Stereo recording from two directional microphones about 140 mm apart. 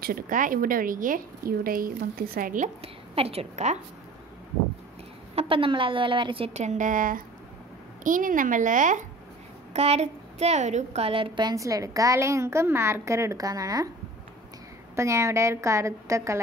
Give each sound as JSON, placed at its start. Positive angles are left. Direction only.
{"t": 0.0, "sound": "a woman's voice", "side_deg": -80}
{"t": 2.8, "sound": "a woman's voice", "side_deg": -45}
{"t": 5.3, "sound": "a woman's voice", "side_deg": -45}
{"t": 9.8, "sound": "a woman's voice", "side_deg": -50}
{"t": 15.0, "sound": "a woman's voice", "side_deg": -20}